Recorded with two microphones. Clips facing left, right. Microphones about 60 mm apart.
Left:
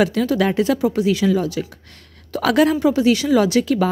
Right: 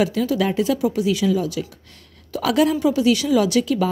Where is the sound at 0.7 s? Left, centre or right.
Left.